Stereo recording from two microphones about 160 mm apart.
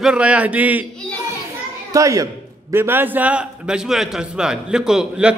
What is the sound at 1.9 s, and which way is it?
A man's voice, 20° right (ahead or behind).